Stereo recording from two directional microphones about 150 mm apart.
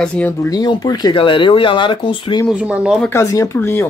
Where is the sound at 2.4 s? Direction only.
10° right (ahead or behind).